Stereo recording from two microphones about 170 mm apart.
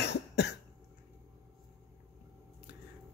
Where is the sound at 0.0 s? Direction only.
75° left (ahead or behind).